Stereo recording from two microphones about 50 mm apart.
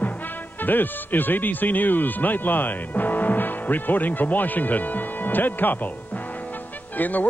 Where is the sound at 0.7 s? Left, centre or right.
Left.